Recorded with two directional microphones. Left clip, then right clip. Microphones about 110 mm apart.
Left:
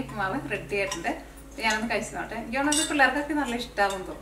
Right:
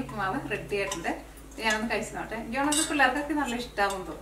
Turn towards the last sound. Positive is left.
turn(degrees=0)  # may be behind; listen again after turning